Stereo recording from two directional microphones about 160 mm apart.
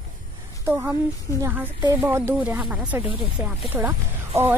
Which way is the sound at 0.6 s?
10° right (ahead or behind).